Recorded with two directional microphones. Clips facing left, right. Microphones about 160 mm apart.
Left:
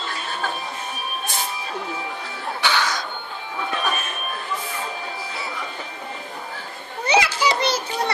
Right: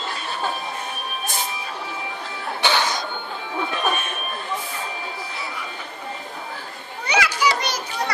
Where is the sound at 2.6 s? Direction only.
25° right (ahead or behind).